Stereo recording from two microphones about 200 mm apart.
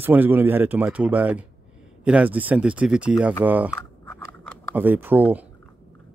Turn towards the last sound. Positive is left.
turn(degrees=-10)  # may be behind; listen again after turning